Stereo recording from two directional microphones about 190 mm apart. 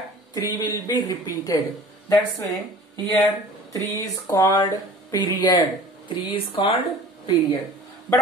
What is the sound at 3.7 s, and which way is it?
Speech, 20° left (ahead or behind).